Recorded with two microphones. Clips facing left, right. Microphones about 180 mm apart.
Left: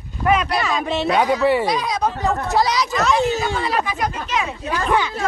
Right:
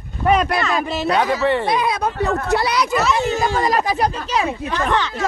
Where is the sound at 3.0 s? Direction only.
5° right (ahead or behind).